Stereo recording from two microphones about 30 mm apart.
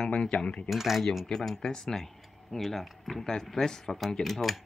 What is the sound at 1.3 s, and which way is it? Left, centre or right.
Speech, centre.